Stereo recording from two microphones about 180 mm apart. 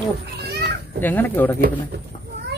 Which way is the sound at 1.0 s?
10° left (ahead or behind).